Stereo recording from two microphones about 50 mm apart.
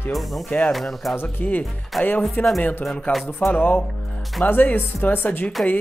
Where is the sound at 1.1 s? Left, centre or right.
Left.